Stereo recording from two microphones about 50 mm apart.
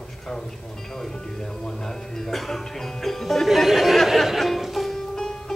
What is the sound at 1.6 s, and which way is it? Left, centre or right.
Speech, centre.